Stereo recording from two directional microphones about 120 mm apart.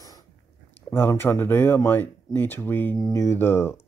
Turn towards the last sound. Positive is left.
turn(degrees=20)  # may be behind; listen again after turning